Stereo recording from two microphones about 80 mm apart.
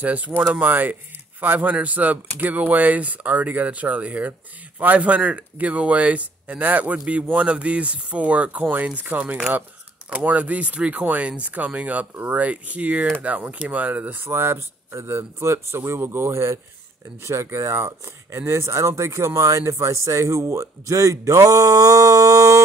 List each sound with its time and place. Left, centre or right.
0.0 s speech: centre; by 22.6 s right